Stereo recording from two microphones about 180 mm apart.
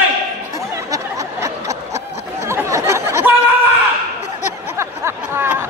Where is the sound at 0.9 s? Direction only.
15° right (ahead or behind).